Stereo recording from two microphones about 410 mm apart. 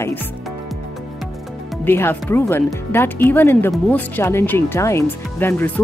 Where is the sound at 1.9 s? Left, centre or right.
Centre.